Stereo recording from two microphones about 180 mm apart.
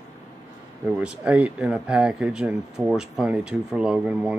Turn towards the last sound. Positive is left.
turn(degrees=-5)  # may be behind; listen again after turning